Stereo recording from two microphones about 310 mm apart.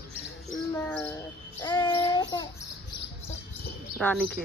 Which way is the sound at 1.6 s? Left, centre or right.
Centre.